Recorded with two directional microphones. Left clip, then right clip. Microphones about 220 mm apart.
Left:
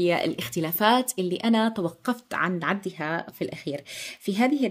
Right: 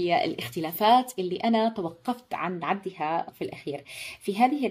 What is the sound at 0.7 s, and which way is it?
Speech, 45° left (ahead or behind).